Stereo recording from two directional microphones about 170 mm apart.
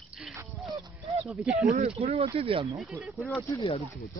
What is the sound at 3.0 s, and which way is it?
Speech, centre (ahead or behind).